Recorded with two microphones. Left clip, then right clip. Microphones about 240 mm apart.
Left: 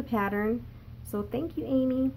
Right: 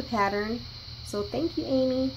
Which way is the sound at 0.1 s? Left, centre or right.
Left.